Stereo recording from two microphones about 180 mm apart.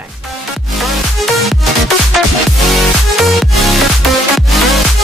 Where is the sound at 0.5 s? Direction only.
Centre (ahead or behind).